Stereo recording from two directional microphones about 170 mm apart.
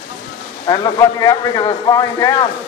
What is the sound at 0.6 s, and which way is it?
A man's voice, 25° left (ahead or behind).